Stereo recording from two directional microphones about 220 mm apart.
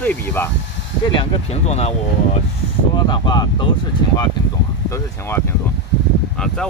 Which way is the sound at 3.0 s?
20° left (ahead or behind).